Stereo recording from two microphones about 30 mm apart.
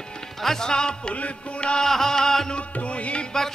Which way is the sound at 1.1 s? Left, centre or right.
Left.